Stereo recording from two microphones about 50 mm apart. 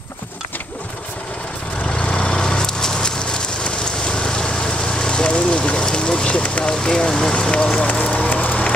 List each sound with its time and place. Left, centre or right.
1.9 s vehicle: centre
6.7 s speech: centre
7.8 s a sound: left